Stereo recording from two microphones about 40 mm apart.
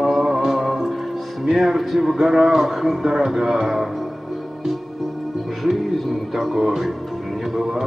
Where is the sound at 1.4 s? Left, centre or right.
Centre.